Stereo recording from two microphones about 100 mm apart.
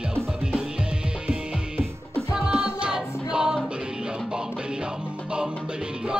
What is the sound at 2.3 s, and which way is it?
Music, 5° right (ahead or behind).